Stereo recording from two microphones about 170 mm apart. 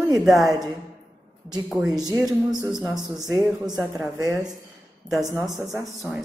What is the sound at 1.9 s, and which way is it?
Speech, 20° right (ahead or behind).